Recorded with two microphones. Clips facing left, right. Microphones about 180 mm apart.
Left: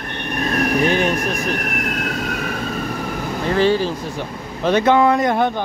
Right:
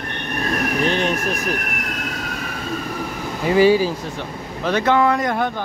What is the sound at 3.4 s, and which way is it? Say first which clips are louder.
Speech: right 3 dB; 10° right (ahead or behind).